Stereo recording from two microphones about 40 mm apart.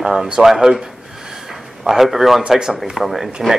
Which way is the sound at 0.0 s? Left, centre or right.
Centre.